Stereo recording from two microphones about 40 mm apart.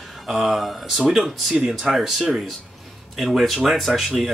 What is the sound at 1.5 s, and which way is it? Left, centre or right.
Speech, centre.